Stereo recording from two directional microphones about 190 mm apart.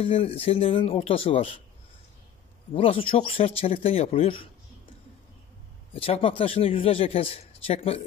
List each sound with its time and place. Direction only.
0.0 s speech: 30° left (ahead or behind)
2.7 s a man's voice: 30° left (ahead or behind)
5.9 s a man's voice: 30° left (ahead or behind)